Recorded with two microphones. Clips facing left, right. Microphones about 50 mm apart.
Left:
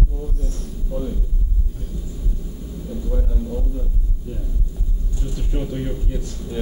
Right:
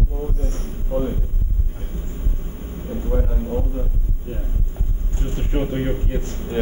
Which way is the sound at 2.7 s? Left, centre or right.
Right.